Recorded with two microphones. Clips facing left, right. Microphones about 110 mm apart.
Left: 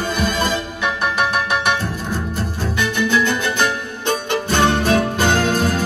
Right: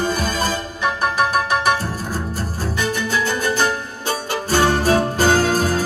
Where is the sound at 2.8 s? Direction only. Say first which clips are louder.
Left 4 dB; 40° right (ahead or behind).